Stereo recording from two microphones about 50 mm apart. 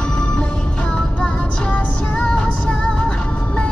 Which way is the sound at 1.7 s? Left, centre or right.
Centre.